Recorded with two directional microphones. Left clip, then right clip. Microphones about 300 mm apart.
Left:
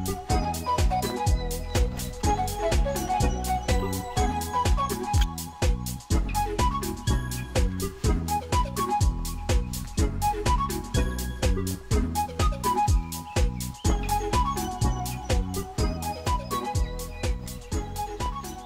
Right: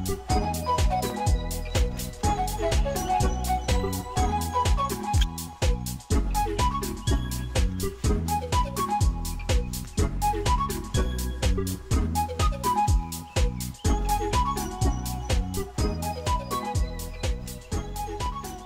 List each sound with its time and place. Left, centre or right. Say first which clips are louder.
0.0 s music: right 1 dB; centre